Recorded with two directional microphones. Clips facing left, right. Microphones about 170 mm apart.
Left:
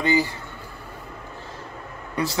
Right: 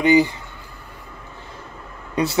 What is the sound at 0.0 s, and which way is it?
Speech, 20° right (ahead or behind).